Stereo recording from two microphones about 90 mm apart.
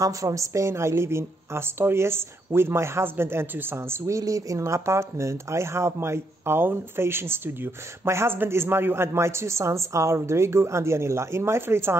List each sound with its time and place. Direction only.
0.0 s speech: 40° right (ahead or behind)
4.2 s speech: 40° right (ahead or behind)